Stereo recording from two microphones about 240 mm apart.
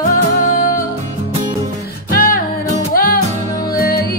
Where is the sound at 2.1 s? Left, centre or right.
Left.